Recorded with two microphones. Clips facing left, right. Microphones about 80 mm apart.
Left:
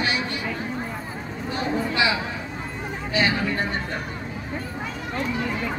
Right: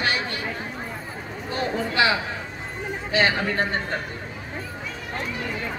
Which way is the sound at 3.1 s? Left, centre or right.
Right.